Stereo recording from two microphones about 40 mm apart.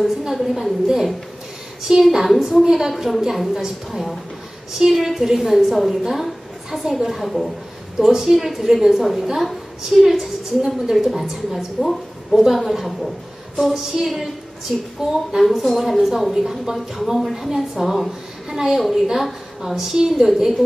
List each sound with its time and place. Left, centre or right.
0.3 s a woman's voice: centre
2.1 s a woman's voice: centre
7.2 s a woman's voice: centre
8.1 s a woman's voice: centre
15.0 s speech: right
15.3 s a woman's voice: centre
18.5 s a woman's voice: centre